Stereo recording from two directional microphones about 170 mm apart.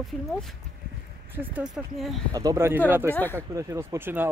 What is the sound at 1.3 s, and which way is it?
Speech, 10° right (ahead or behind).